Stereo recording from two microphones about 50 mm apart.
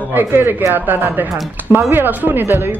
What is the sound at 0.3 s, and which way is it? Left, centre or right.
Speech, right.